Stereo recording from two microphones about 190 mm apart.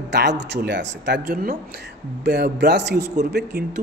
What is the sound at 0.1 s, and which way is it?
Speech, 60° right (ahead or behind).